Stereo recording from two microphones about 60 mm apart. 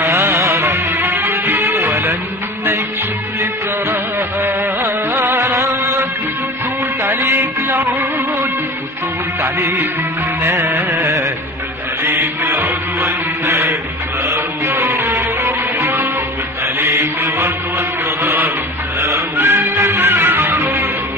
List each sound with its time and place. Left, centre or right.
0.0 s music: right
3.9 s music: right
9.4 s music of bollywood: right
10.7 s carnatic music: right
12.0 s music: right
18.9 s music: right
19.8 s music: right